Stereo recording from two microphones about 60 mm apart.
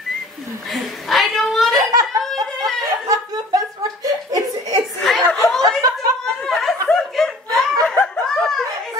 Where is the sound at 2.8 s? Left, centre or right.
Right.